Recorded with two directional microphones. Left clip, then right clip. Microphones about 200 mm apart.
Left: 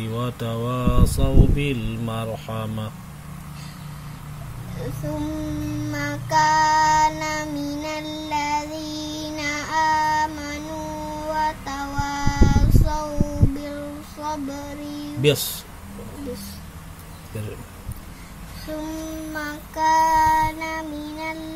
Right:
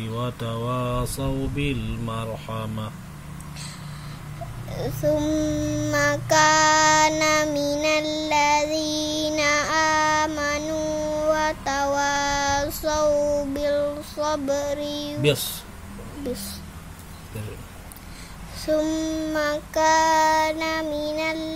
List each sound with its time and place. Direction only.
0.0 s mantra: 15° left (ahead or behind)
5.1 s child singing: 55° right (ahead or behind)
15.2 s mantra: 20° left (ahead or behind)
19.3 s child singing: 55° right (ahead or behind)